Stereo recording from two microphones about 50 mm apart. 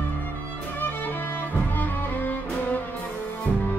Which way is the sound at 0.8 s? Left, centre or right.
Left.